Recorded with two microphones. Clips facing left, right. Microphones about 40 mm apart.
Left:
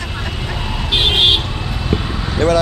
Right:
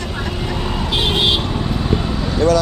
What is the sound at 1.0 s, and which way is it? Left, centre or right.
Vehicle, left.